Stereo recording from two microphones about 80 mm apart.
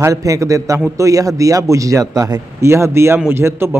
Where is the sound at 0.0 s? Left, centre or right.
Right.